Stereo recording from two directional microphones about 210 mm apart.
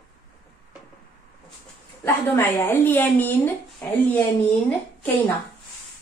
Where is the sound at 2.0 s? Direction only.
10° left (ahead or behind).